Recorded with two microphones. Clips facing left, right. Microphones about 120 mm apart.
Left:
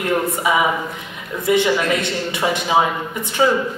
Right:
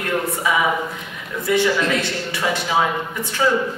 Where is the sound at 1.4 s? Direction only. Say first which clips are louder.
Left 2 dB; 20° left (ahead or behind).